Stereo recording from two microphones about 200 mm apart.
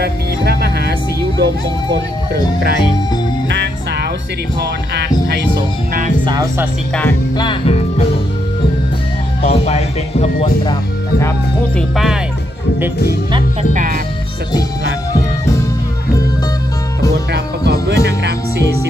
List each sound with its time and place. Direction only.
0.0 s music: 55° right (ahead or behind)
1.4 s speech: 55° right (ahead or behind)
7.3 s speech: 25° left (ahead or behind)
9.5 s speech: 30° left (ahead or behind); by 11.8 s 15° left (ahead or behind)
17.3 s music: 55° right (ahead or behind)